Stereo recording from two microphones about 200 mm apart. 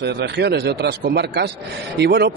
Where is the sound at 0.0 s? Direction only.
55° right (ahead or behind).